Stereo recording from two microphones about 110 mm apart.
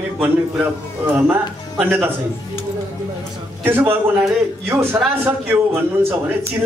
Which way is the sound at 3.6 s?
20° right (ahead or behind).